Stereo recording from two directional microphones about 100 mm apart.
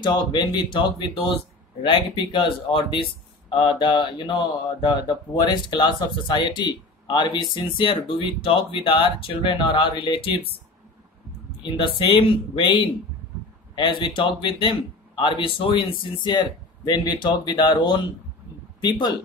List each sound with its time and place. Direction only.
0.0 s speech: 45° left (ahead or behind)
11.6 s speech: 55° left (ahead or behind)